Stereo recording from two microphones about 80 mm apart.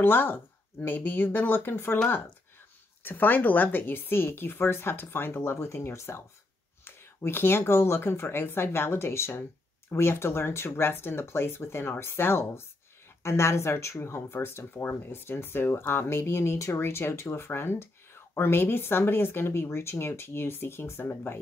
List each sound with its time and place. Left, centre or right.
0.0 s a woman's voice: left
3.0 s a woman's voice: left
7.2 s speech: left